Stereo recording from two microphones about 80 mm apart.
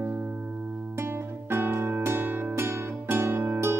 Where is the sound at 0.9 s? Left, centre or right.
Right.